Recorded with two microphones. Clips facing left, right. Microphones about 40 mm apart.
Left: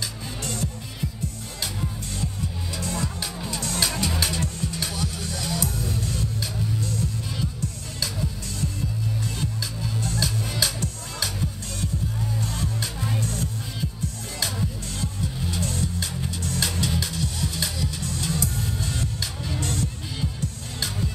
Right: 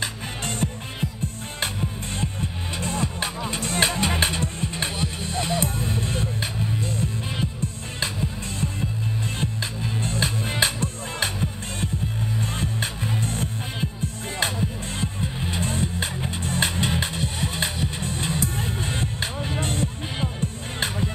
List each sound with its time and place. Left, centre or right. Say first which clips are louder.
0.0 s music: right 3 dB; right
12.4 s music: right 4 dB; right